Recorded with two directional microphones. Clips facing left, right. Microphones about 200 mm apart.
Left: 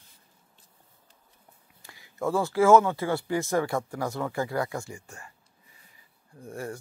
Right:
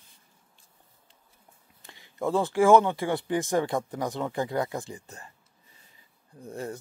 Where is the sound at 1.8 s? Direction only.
20° right (ahead or behind).